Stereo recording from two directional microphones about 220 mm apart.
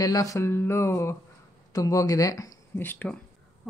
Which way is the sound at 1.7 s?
15° left (ahead or behind).